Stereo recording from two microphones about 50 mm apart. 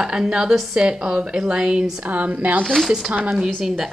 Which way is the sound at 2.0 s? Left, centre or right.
Right.